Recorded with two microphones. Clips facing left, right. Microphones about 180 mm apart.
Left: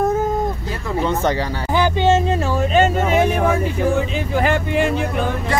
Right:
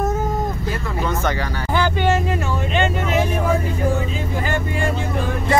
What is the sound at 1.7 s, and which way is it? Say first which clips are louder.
Speech: left 3 dB; 20° left (ahead or behind).